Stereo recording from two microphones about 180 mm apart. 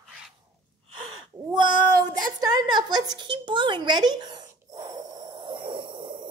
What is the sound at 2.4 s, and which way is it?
A woman's voice, 25° right (ahead or behind).